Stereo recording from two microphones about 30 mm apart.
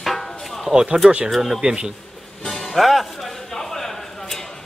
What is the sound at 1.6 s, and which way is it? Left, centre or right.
Speech, right.